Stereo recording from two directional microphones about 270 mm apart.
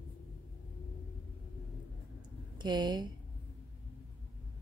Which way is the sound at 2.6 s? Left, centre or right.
Centre.